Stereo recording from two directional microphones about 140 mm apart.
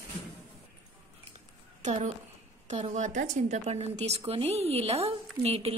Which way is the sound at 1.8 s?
60° right (ahead or behind).